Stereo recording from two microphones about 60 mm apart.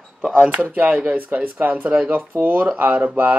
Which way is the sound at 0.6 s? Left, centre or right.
Right.